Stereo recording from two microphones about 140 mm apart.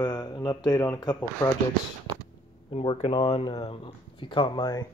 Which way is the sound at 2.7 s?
40° left (ahead or behind).